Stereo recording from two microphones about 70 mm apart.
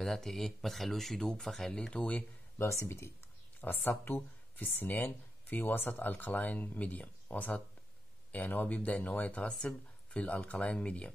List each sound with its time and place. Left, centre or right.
0.0 s speech: centre
2.6 s speech: left
3.6 s speech: left